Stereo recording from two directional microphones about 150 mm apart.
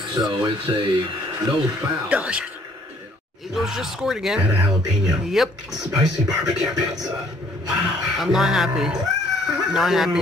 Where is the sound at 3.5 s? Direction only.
Centre (ahead or behind).